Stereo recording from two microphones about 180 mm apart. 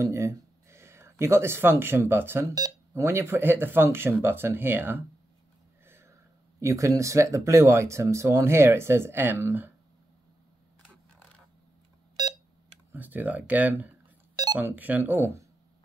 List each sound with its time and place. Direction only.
0.0 s speech: 15° right (ahead or behind)
5.9 s a sound: 15° right (ahead or behind)
6.6 s speech: 15° right (ahead or behind)
12.2 s beep: 25° right (ahead or behind)
12.9 s speech: 10° right (ahead or behind)
14.3 s a sound: 20° right (ahead or behind)
14.6 s speech: 10° right (ahead or behind)